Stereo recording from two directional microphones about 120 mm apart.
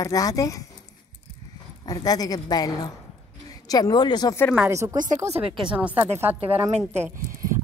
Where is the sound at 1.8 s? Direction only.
30° left (ahead or behind).